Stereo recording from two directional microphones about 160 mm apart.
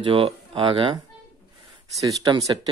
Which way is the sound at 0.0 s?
35° right (ahead or behind).